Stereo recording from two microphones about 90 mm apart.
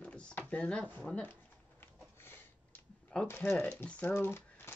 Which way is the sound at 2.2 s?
25° left (ahead or behind).